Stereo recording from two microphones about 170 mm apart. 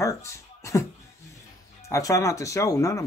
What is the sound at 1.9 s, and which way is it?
Speech, 20° left (ahead or behind).